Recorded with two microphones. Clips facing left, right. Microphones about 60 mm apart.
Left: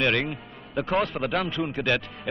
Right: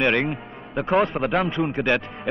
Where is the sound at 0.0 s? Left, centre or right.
Right.